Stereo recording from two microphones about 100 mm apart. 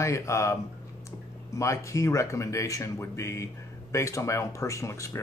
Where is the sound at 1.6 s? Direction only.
30° left (ahead or behind).